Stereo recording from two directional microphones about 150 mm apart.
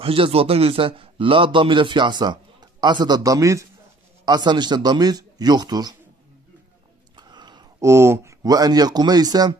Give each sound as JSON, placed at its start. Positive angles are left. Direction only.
{"t": 0.0, "sound": "a man's voice", "side_deg": -40}
{"t": 7.2, "sound": "a sound", "side_deg": -30}
{"t": 7.8, "sound": "speech", "side_deg": -20}